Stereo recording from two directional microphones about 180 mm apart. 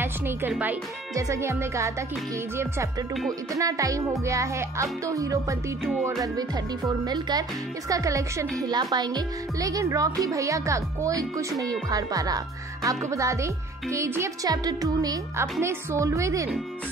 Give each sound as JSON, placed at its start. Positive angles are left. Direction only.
{"t": 0.0, "sound": "speech", "side_deg": -10}